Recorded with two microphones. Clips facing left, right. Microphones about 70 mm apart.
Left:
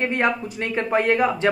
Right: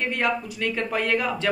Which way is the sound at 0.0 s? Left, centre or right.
Left.